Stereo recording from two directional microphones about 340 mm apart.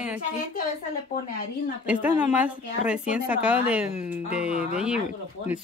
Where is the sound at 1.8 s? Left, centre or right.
Centre.